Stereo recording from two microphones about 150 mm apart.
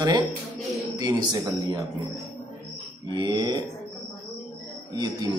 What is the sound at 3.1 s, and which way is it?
Speech, 30° right (ahead or behind).